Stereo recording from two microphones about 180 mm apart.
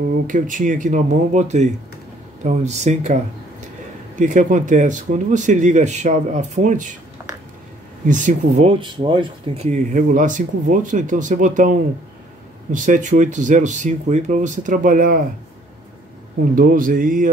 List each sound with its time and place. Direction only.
0.3 s speech: 45° right (ahead or behind)
4.2 s speech: 45° right (ahead or behind)
8.1 s speech: 40° right (ahead or behind)
9.7 s speech: 45° right (ahead or behind)
12.7 s speech: 45° right (ahead or behind)
16.5 s speech: 50° right (ahead or behind)